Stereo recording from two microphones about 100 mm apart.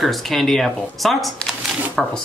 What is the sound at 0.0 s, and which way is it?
Speech, centre (ahead or behind).